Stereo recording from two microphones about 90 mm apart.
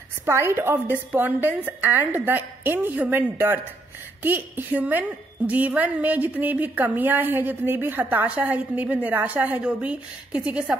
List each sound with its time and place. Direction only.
0.2 s a woman's voice: 25° right (ahead or behind)